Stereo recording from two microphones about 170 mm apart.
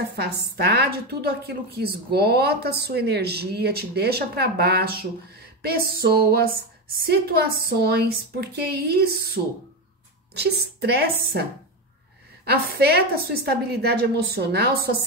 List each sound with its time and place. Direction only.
0.1 s a woman's voice: 75° right (ahead or behind)
12.7 s a woman's voice: 65° right (ahead or behind)